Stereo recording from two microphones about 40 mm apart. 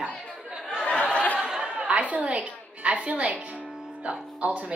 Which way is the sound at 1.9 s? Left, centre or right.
Right.